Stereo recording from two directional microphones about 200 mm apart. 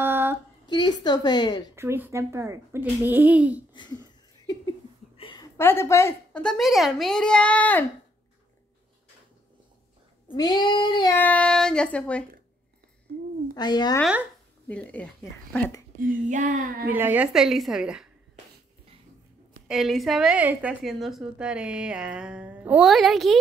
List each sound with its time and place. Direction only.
0.0 s a sound: 10° right (ahead or behind)
0.7 s a sound: 20° left (ahead or behind)
1.0 s cat: 20° left (ahead or behind)
1.8 s a child's voice: 10° right (ahead or behind)
5.1 s a sound: 25° left (ahead or behind)
5.6 s a woman's voice: 10° left (ahead or behind)
10.3 s cat: 20° left (ahead or behind)
11.1 s a woman's voice: 5° left (ahead or behind)
13.6 s cat: 20° left (ahead or behind)
14.7 s speech: 5° left (ahead or behind)
16.1 s child singing: 40° right (ahead or behind)
16.9 s a woman's voice: 10° right (ahead or behind)
19.7 s a woman's voice: centre (ahead or behind)